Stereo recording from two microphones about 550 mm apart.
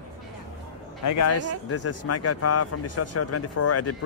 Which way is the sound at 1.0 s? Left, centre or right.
Left.